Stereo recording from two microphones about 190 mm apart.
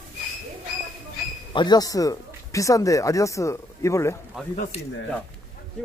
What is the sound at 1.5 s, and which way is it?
Speech, 20° left (ahead or behind).